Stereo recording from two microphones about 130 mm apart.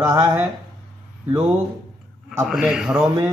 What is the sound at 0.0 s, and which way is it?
Speech, 20° right (ahead or behind).